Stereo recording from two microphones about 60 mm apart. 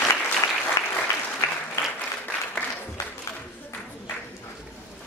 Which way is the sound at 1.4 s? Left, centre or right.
Left.